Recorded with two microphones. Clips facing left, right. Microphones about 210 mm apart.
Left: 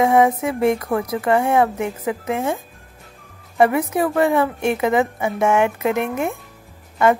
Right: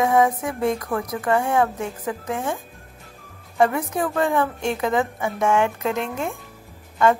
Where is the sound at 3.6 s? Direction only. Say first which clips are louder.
Left 4 dB; 15° left (ahead or behind).